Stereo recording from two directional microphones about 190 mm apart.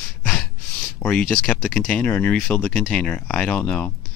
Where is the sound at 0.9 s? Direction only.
5° left (ahead or behind).